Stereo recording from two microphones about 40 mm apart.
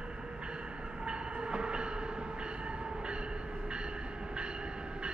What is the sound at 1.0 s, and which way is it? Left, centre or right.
Train, right.